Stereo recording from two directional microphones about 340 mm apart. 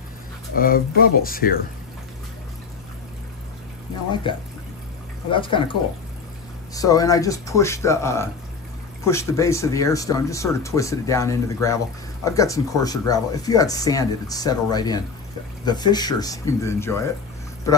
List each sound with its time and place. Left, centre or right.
0.6 s speech: left
4.1 s speech: centre
6.7 s speech: centre